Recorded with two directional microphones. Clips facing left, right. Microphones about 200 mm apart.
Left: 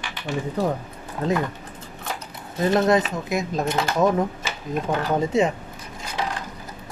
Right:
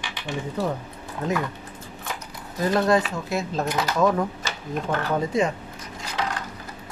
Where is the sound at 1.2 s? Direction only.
30° left (ahead or behind).